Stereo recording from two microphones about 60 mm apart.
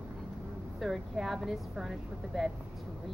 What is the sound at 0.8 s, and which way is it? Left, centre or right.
A woman's voice, centre.